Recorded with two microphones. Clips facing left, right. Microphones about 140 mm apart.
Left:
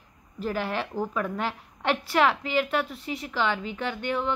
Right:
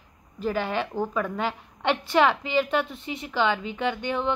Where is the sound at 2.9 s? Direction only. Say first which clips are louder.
Right 2 dB; 25° right (ahead or behind).